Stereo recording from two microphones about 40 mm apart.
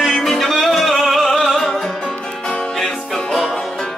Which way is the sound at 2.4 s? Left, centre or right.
Left.